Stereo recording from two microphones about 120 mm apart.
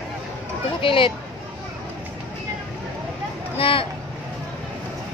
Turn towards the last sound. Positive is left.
turn(degrees=50)  # may be behind; listen again after turning